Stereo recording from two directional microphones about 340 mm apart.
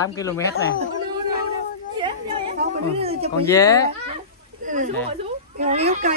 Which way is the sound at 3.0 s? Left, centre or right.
Centre.